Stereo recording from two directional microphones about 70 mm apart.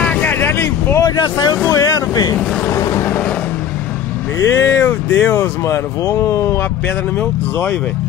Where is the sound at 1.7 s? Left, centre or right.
Left.